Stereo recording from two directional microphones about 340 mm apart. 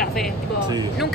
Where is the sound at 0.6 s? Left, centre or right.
Centre.